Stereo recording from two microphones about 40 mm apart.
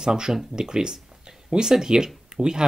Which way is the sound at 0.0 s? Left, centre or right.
Centre.